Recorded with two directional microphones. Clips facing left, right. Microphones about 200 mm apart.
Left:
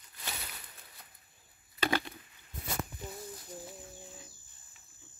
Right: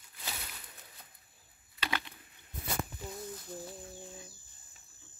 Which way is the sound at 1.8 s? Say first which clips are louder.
Left 7 dB; 45° left (ahead or behind).